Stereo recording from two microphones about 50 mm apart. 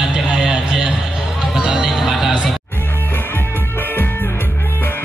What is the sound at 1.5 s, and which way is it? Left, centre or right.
Music, centre.